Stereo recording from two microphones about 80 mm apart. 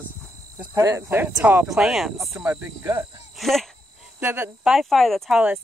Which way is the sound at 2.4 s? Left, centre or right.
Centre.